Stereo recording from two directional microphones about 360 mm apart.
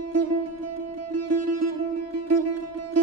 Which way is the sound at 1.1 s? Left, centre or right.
Right.